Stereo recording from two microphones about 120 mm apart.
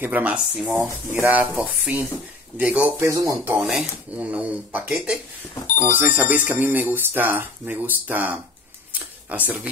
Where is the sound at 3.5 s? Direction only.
5° right (ahead or behind).